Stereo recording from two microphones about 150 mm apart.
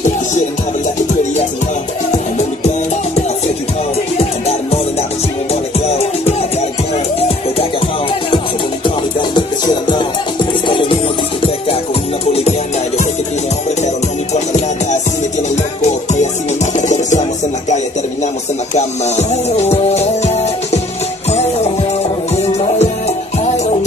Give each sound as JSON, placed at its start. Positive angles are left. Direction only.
{"t": 4.2, "sound": "music", "side_deg": 45}
{"t": 12.3, "sound": "music", "side_deg": 45}
{"t": 16.7, "sound": "music", "side_deg": 55}
{"t": 18.8, "sound": "music", "side_deg": 50}
{"t": 22.3, "sound": "music", "side_deg": 45}